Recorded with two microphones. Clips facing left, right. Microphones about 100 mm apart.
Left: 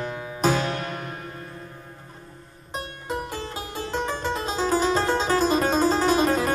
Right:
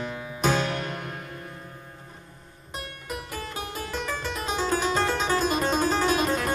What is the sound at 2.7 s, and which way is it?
Music, 25° left (ahead or behind).